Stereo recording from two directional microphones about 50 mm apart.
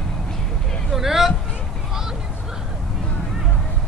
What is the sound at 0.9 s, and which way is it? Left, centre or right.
Hubbub, centre.